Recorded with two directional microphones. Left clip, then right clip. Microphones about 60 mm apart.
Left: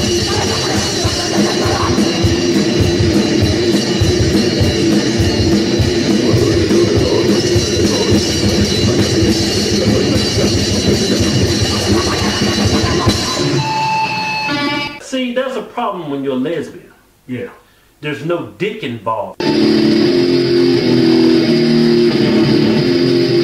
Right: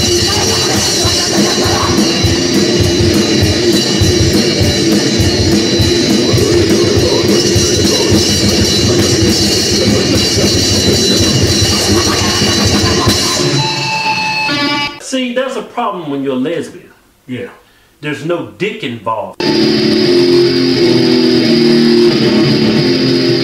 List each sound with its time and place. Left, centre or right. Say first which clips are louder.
0.0 s music: right 4 dB; right
18.3 s music: right 2 dB; centre